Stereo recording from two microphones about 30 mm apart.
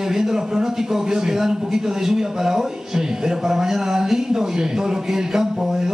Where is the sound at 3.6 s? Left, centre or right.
Centre.